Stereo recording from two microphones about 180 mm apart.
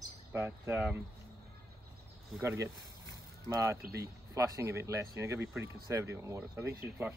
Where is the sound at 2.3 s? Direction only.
15° right (ahead or behind).